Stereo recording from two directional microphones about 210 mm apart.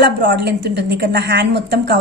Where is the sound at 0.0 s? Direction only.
50° right (ahead or behind).